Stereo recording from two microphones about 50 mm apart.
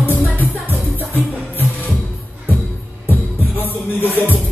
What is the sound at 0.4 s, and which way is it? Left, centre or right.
Music, left.